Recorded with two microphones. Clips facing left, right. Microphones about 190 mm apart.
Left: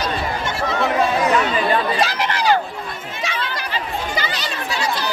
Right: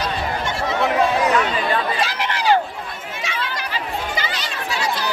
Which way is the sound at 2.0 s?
40° left (ahead or behind).